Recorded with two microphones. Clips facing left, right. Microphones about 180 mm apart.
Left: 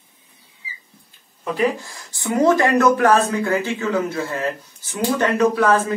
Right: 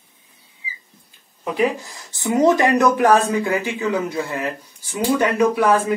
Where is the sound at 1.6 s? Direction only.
20° right (ahead or behind).